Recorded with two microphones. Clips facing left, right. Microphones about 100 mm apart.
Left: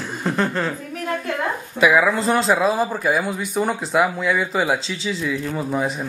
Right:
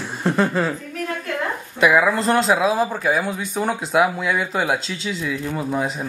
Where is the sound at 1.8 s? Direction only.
Centre (ahead or behind).